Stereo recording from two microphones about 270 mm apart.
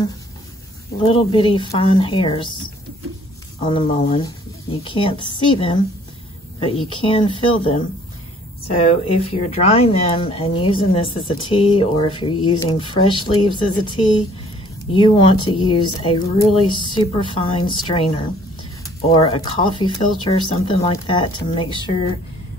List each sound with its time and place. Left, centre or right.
1.0 s speech: centre
3.5 s speech: left
7.0 s speech: centre
15.0 s speech: centre
19.0 s speech: left